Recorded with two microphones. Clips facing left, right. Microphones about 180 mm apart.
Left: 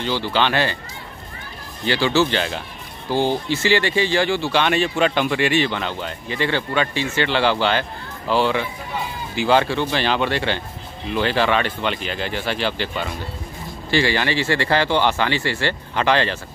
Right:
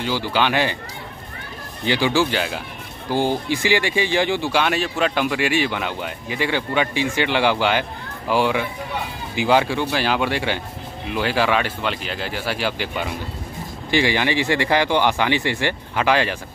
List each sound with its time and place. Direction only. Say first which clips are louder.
0.0 s speech: even; 10° right (ahead or behind)
1.9 s speech: left 1 dB; 15° right (ahead or behind)